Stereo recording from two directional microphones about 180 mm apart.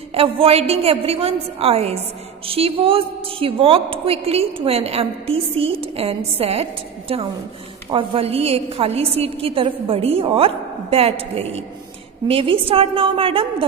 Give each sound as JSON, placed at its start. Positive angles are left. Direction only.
{"t": 0.1, "sound": "a woman's voice", "side_deg": -35}